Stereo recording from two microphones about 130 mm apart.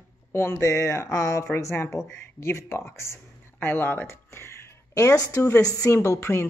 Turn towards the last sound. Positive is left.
turn(degrees=20)  # may be behind; listen again after turning